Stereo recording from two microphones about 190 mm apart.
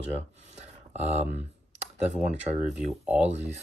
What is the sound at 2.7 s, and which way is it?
Speech, 5° right (ahead or behind).